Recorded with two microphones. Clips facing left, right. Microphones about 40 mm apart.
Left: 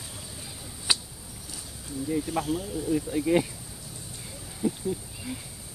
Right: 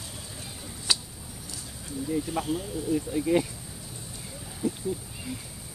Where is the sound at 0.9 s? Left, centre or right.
Centre.